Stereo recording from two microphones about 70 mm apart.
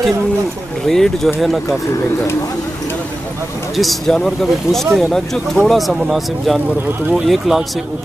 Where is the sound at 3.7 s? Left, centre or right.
Centre.